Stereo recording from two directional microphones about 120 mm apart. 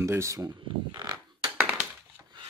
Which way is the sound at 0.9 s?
40° right (ahead or behind).